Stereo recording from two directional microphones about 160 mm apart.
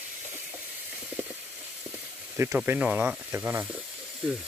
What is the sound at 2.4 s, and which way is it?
Speech, 15° right (ahead or behind).